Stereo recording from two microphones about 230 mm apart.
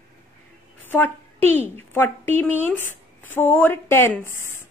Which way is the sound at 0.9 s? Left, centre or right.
Centre.